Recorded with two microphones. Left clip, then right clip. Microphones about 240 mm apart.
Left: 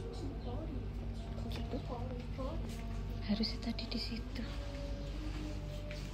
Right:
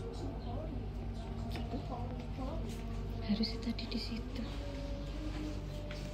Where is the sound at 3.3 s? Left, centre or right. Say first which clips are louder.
Even; centre.